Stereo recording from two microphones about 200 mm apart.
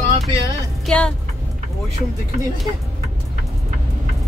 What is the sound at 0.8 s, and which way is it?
Speech, 5° left (ahead or behind).